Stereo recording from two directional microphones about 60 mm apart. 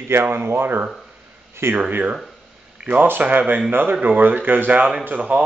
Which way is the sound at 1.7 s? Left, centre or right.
Right.